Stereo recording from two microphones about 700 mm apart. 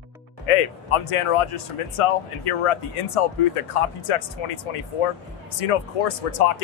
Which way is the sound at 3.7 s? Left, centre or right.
Left.